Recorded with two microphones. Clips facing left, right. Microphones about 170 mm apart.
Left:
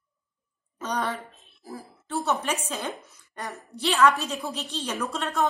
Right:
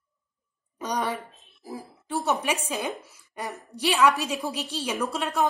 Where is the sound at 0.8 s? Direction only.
10° right (ahead or behind).